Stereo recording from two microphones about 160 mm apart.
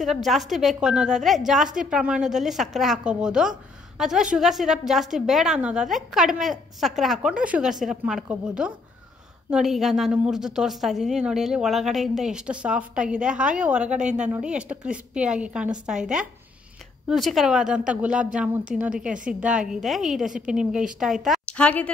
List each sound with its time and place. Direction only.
0.0 s a woman's voice: centre (ahead or behind)